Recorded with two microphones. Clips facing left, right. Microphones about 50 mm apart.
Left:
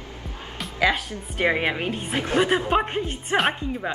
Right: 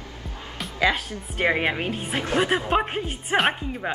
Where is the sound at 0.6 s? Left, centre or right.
Centre.